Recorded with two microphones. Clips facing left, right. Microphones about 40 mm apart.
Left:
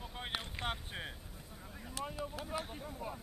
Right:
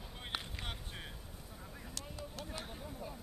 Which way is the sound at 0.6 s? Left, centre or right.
Left.